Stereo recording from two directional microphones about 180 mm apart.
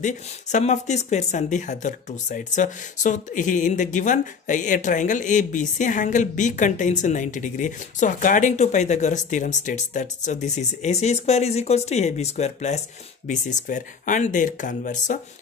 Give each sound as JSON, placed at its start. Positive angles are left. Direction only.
{"t": 0.0, "sound": "speech", "side_deg": 40}